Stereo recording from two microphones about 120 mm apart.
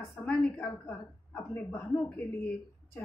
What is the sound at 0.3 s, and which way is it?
A woman's voice, 10° left (ahead or behind).